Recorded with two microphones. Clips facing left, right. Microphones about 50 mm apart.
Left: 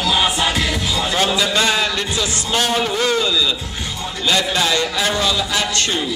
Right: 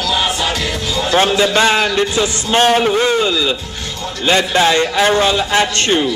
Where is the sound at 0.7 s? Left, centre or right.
Centre.